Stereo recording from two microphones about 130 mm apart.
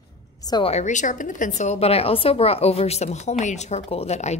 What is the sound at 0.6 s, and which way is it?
Speech, 60° left (ahead or behind).